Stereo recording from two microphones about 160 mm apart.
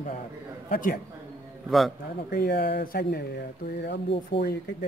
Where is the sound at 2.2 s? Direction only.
80° left.